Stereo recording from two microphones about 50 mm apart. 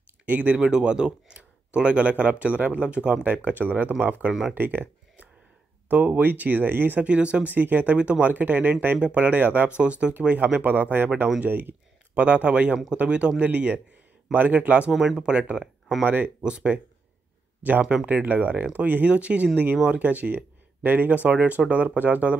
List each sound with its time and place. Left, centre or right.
0.2 s speech: right
0.7 s speech: centre; by 2.8 s right
2.8 s speech: right
3.3 s speech: right
4.3 s speech: centre
4.6 s speech: right
5.9 s speech: right
7.0 s speech: right
9.8 s speech: right
14.9 s speech: centre
18.0 s speech: right